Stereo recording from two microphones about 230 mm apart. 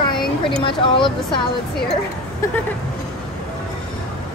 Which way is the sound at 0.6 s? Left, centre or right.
Left.